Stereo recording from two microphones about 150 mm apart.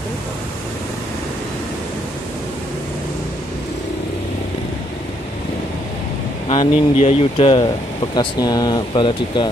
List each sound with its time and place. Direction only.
6.5 s speech: 40° left (ahead or behind)